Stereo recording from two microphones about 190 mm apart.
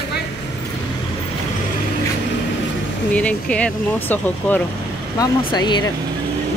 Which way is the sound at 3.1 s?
5° left (ahead or behind).